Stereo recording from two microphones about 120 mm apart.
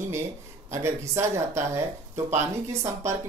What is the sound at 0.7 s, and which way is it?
Speech, 25° right (ahead or behind).